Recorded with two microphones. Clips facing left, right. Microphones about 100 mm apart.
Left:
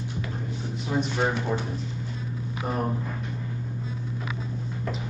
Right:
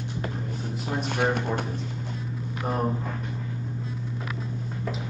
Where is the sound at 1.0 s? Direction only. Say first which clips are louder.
Right 1 dB; 55° right (ahead or behind).